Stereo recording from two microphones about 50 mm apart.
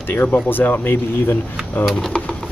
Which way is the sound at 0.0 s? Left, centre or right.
Left.